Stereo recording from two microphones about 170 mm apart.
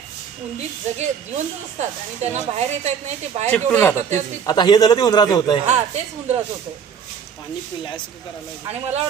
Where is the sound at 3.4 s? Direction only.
10° left (ahead or behind).